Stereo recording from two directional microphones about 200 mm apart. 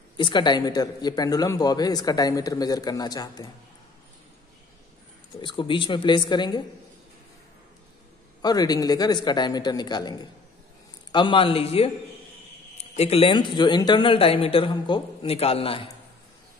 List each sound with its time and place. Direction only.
0.2 s a man's voice: 20° left (ahead or behind)
5.4 s a man's voice: 25° left (ahead or behind)
8.4 s a man's voice: 20° left (ahead or behind)